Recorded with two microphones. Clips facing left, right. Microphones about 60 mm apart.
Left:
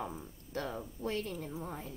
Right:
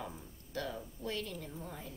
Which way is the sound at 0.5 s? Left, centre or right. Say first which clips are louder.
Left 2 dB; left.